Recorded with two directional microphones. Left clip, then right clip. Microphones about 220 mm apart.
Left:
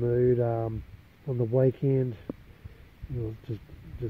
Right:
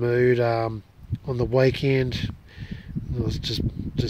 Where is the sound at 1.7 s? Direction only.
15° right (ahead or behind).